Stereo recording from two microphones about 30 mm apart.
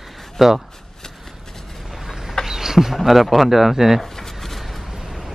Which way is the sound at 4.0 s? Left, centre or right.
Centre.